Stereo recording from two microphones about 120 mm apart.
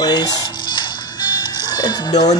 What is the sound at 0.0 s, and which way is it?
Music, 35° left (ahead or behind).